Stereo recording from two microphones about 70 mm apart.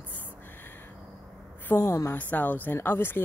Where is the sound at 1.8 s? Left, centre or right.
Left.